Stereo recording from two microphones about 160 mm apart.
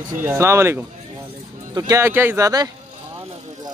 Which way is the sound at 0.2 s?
15° right (ahead or behind).